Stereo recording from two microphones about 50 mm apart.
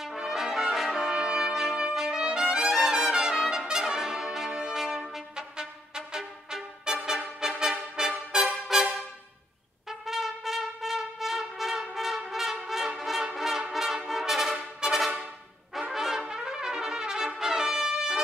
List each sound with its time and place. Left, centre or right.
0.2 s brass instrument: centre
5.3 s music: centre
9.8 s trumpet: centre
12.6 s brass instrument: centre